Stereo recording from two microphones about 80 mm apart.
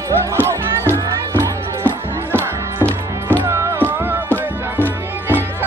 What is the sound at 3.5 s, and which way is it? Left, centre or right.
Music, right.